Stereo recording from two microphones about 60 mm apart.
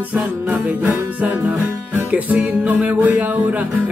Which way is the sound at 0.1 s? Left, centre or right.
Right.